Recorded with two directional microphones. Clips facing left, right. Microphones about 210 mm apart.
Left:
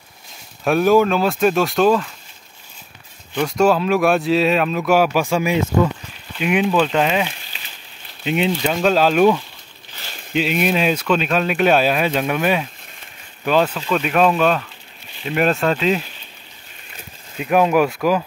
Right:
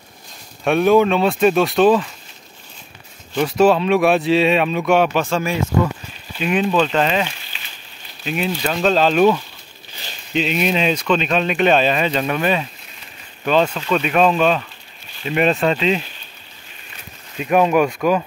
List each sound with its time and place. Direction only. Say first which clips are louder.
0.7 s speech: right 1 dB; centre (ahead or behind)
3.3 s speech: right 2 dB; centre (ahead or behind)
8.3 s speech: left 3 dB; 20° left (ahead or behind)
8.6 s speech: right 1 dB; 10° left (ahead or behind)
13.7 s speech: right 1 dB; 5° right (ahead or behind)
17.4 s speech: even; 5° left (ahead or behind)